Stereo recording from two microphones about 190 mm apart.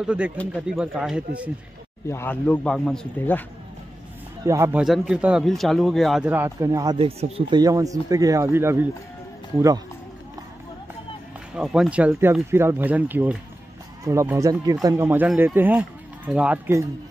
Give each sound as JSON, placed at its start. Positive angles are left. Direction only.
{"t": 0.0, "sound": "speech", "side_deg": -5}
{"t": 2.0, "sound": "a man's voice", "side_deg": 10}
{"t": 4.5, "sound": "speech", "side_deg": -15}
{"t": 4.8, "sound": "speech", "side_deg": -5}
{"t": 6.3, "sound": "speech", "side_deg": -15}
{"t": 11.5, "sound": "speech", "side_deg": -5}